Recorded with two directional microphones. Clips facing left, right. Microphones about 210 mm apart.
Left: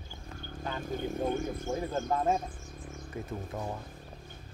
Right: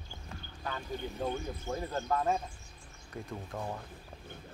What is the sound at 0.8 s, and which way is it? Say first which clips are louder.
Speech: left 5 dB; 50° left (ahead or behind).